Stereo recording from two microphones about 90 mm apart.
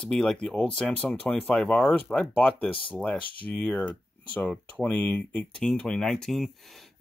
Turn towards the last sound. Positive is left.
turn(degrees=0)  # may be behind; listen again after turning